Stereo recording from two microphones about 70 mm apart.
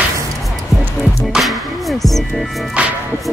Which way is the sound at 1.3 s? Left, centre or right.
Centre.